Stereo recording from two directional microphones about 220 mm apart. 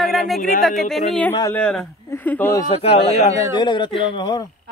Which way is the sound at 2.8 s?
25° left (ahead or behind).